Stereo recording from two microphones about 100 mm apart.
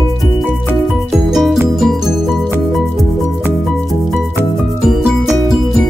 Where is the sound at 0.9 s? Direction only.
Centre (ahead or behind).